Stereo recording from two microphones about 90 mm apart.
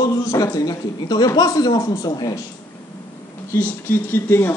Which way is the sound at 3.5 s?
25° left (ahead or behind).